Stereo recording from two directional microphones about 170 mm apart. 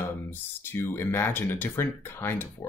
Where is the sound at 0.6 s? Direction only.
15° left (ahead or behind).